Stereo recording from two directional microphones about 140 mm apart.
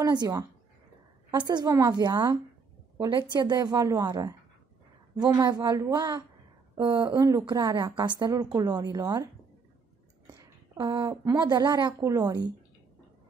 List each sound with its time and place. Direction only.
0.0 s a woman's voice: 30° right (ahead or behind)
1.5 s a woman's voice: 30° right (ahead or behind)
5.4 s a woman's voice: 30° right (ahead or behind)
6.7 s a sound: 35° right (ahead or behind)
7.1 s a woman's voice: 25° right (ahead or behind)